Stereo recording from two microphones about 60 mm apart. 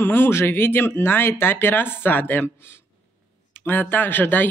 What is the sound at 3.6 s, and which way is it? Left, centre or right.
Speech, left.